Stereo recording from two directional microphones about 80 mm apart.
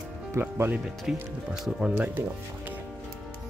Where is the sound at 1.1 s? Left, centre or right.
Centre.